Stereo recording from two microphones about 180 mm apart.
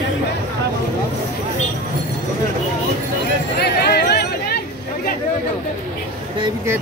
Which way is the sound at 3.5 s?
60° left (ahead or behind).